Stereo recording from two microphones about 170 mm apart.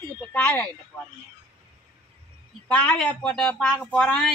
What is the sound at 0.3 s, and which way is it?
Speech, 10° left (ahead or behind).